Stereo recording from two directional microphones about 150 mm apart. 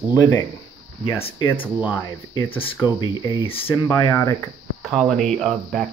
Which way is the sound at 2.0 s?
25° left (ahead or behind).